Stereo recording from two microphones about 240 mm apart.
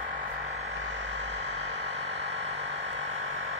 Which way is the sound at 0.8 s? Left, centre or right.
Right.